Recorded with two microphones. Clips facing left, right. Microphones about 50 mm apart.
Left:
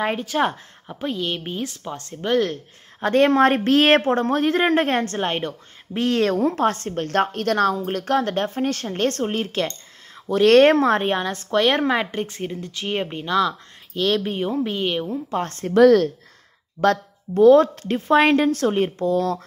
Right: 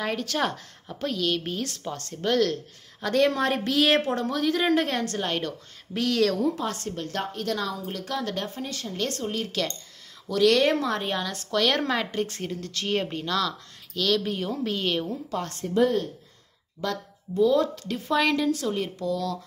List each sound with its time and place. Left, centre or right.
0.2 s a woman's voice: left
15.3 s a woman's voice: left
15.7 s speech: left
16.8 s a woman's voice: left